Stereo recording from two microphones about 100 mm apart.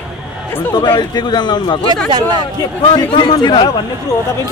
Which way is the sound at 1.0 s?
45° left (ahead or behind).